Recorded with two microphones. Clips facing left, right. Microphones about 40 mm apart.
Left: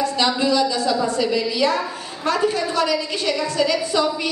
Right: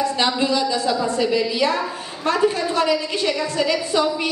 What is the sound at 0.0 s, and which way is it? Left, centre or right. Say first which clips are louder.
Speech: even; right.